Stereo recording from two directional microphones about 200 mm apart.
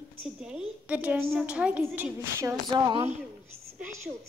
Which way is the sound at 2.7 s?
25° right (ahead or behind).